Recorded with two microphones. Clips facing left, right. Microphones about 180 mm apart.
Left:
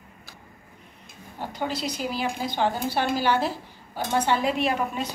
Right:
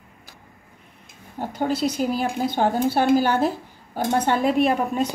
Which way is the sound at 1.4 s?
50° right (ahead or behind).